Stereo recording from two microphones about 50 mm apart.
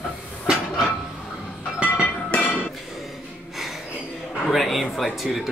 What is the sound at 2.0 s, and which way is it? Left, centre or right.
Train, left.